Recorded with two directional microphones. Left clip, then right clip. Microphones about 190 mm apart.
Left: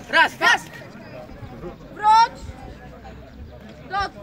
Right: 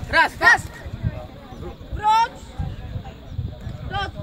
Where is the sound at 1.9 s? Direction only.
25° right (ahead or behind).